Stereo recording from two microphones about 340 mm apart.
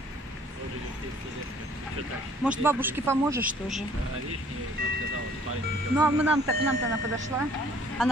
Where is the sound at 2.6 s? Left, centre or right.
Centre.